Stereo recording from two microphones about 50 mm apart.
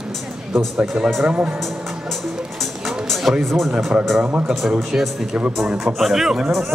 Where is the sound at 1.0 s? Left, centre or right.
Right.